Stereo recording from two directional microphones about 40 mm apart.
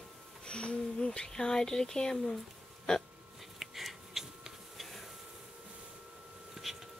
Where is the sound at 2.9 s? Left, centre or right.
Centre.